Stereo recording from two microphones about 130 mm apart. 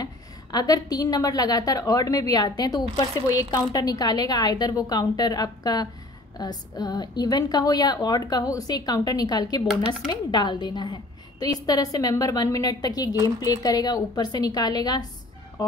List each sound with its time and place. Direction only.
0.0 s a woman's voice: 30° left (ahead or behind)